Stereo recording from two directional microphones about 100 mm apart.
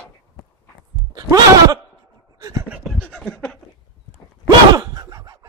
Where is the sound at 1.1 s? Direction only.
40° right (ahead or behind).